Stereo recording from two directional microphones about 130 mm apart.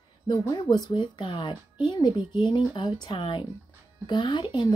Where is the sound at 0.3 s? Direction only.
35° left (ahead or behind).